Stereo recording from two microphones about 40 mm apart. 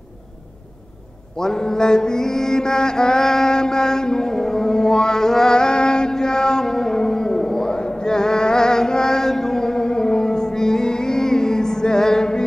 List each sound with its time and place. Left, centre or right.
1.3 s mantra: centre